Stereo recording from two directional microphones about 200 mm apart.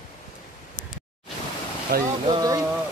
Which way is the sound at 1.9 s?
50° right (ahead or behind).